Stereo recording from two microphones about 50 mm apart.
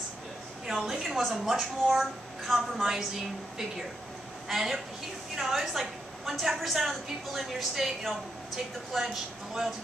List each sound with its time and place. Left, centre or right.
0.7 s a woman's voice: centre
4.5 s a woman's voice: centre
8.9 s a woman's voice: centre